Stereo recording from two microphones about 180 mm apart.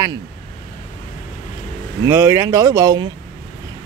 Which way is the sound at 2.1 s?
15° right (ahead or behind).